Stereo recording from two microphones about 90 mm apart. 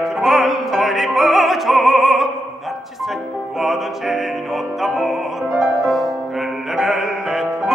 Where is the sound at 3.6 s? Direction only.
Centre (ahead or behind).